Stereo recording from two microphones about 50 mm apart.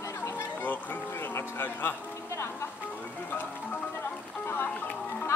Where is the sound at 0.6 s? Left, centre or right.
Left.